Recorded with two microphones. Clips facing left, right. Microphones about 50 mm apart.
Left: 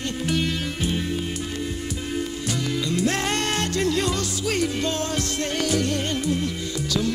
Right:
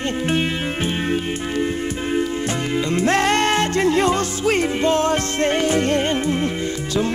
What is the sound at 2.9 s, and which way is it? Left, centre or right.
Music, right.